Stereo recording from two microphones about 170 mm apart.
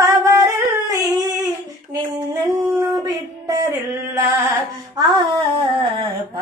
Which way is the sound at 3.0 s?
20° right (ahead or behind).